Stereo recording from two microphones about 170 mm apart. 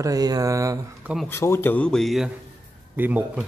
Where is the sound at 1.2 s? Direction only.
15° left (ahead or behind).